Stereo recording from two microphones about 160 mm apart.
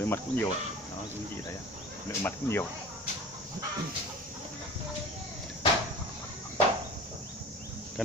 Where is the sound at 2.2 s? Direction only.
15° left (ahead or behind).